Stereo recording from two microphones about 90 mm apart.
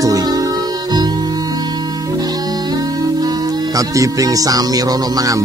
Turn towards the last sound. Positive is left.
turn(degrees=-40)  # may be behind; listen again after turning